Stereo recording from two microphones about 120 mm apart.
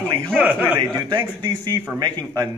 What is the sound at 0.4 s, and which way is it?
Speech, 15° right (ahead or behind).